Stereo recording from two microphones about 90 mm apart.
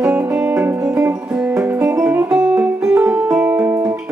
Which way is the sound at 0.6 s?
20° right (ahead or behind).